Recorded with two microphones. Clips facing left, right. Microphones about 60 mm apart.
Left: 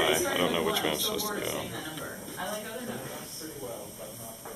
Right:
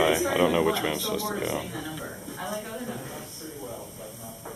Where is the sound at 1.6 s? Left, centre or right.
Centre.